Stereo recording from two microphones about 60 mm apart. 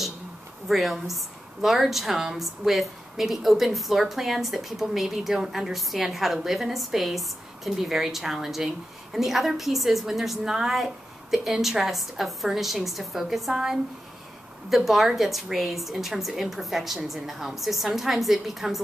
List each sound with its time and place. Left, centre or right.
0.7 s a woman's voice: centre